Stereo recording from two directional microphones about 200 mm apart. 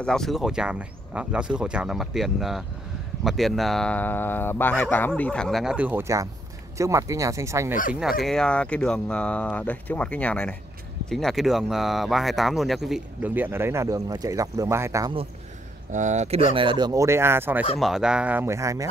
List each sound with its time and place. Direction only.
0.0 s speech: 5° left (ahead or behind); by 7.7 s 15° right (ahead or behind)
8.2 s speech: 5° left (ahead or behind); by 15.1 s 15° right (ahead or behind)
15.9 s speech: 40° right (ahead or behind)
16.5 s speech: 25° right (ahead or behind)